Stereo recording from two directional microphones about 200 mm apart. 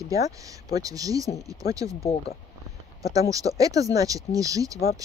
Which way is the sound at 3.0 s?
15° right (ahead or behind).